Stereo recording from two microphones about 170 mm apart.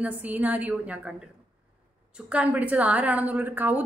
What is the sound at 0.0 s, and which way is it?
A woman's voice, 10° right (ahead or behind).